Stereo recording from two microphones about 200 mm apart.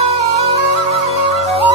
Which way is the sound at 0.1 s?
30° right (ahead or behind).